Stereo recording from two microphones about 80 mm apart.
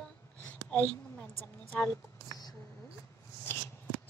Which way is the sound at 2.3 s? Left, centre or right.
Left.